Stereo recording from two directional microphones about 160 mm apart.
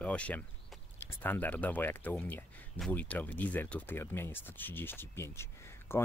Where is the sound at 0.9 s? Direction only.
10° left (ahead or behind).